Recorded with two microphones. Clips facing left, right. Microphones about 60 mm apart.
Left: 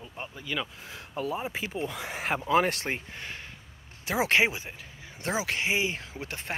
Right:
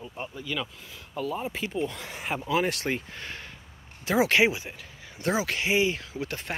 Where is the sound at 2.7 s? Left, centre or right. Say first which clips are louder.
Right 3 dB; left.